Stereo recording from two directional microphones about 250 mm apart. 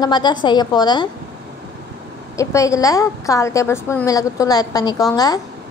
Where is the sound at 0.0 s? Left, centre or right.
Centre.